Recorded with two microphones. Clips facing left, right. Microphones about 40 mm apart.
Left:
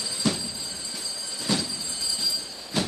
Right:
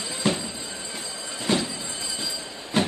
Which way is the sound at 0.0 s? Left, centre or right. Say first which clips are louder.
Right 2 dB; right.